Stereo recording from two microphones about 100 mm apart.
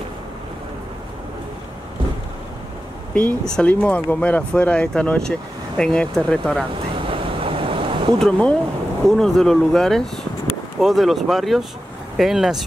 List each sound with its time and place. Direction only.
3.2 s speech: 10° left (ahead or behind)
7.1 s waves: 60° right (ahead or behind)
8.2 s speech: 10° left (ahead or behind)